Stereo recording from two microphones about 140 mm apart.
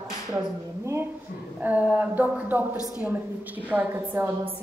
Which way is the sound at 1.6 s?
10° right (ahead or behind).